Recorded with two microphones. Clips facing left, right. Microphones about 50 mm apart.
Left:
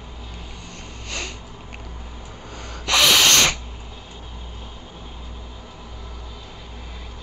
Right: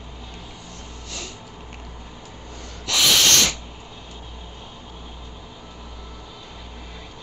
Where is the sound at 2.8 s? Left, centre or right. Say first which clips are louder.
Left 3 dB; left.